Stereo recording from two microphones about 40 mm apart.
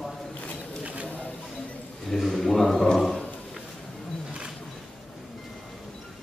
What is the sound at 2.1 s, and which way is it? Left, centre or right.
Speech, centre.